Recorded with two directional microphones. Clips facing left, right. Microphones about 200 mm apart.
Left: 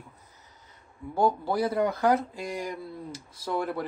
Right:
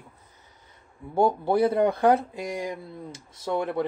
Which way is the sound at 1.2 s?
25° right (ahead or behind).